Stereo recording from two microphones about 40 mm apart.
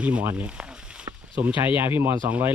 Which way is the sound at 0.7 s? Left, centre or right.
Right.